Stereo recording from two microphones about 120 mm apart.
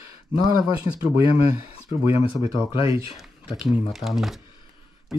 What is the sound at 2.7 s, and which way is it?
Speech, 55° left (ahead or behind).